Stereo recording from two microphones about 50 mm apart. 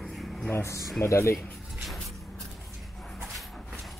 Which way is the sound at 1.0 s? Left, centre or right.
Left.